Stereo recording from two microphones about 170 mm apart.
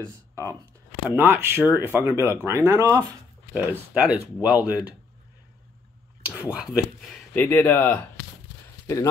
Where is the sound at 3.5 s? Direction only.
10° right (ahead or behind).